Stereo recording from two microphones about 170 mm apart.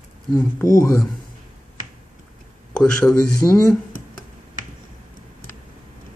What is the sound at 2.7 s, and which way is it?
Speech, 5° left (ahead or behind).